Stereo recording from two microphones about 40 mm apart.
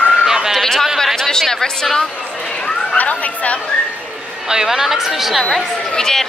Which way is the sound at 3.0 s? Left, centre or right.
Left.